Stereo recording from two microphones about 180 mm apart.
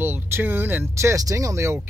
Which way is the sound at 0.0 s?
10° right (ahead or behind).